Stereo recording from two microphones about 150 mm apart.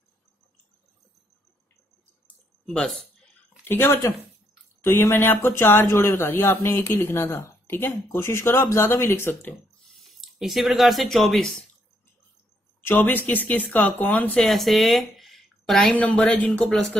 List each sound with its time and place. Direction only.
2.6 s speech: 5° left (ahead or behind)
3.6 s speech: 15° left (ahead or behind)
10.0 s speech: centre (ahead or behind)
12.8 s speech: 10° left (ahead or behind)